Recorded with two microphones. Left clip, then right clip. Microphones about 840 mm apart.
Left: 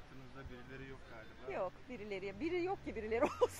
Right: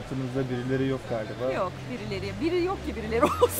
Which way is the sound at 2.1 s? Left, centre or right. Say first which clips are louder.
Right 12 dB; left.